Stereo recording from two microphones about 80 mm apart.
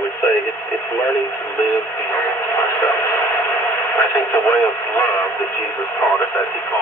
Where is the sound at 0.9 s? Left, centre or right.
Left.